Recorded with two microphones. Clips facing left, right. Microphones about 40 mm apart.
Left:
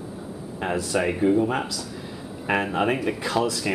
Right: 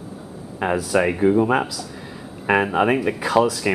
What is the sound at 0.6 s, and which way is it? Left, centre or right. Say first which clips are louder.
Speech: right 5 dB; centre.